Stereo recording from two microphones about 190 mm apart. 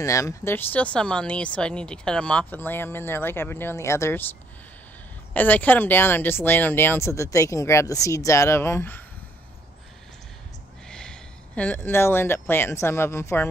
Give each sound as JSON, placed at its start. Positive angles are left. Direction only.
{"t": 0.0, "sound": "speech", "side_deg": 15}
{"t": 5.3, "sound": "speech", "side_deg": 10}
{"t": 10.9, "sound": "speech", "side_deg": 5}